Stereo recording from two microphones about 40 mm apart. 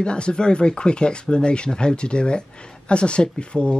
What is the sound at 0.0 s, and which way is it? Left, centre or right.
Speech, left.